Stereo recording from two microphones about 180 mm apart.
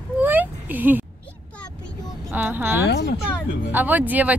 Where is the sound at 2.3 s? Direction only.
10° right (ahead or behind).